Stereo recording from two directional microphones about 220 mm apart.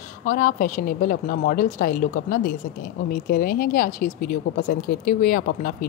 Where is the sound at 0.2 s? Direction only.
40° left (ahead or behind).